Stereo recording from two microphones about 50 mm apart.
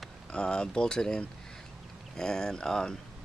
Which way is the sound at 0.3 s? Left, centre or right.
Centre.